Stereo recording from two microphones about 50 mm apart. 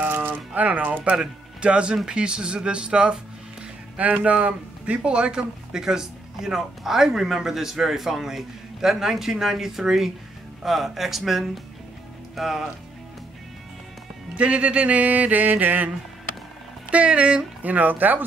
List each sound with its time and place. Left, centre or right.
0.1 s a sound: right
0.6 s speech: right
1.1 s speech: centre
2.0 s music: centre
3.9 s speech: right; by 12.6 s centre
14.3 s music: right
16.9 s music: right
17.6 s speech: right